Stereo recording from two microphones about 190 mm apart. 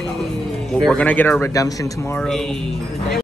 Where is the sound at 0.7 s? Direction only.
5° left (ahead or behind).